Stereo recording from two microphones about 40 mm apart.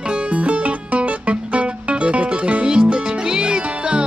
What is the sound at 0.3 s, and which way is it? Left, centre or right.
Music, right.